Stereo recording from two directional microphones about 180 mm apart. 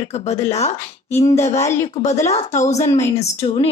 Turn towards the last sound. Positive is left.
turn(degrees=35)  # may be behind; listen again after turning